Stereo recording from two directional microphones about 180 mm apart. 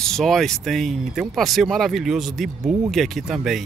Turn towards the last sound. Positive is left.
turn(degrees=0)  # may be behind; listen again after turning